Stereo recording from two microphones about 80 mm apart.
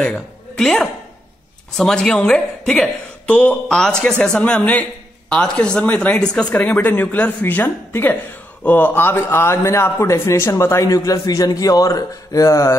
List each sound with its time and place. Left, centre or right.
0.0 s a woman's voice: centre; by 12.7 s left